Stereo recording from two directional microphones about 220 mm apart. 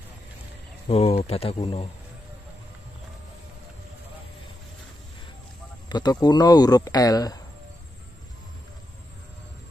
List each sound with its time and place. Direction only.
0.8 s speech: 25° left (ahead or behind)
5.9 s speech: 20° left (ahead or behind)